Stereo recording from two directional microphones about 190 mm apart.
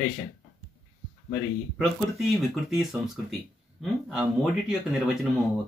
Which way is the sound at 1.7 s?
Centre (ahead or behind).